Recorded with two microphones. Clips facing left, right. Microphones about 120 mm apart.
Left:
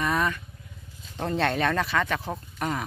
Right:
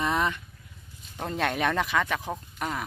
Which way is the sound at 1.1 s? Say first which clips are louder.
Left 3 dB; 5° right (ahead or behind).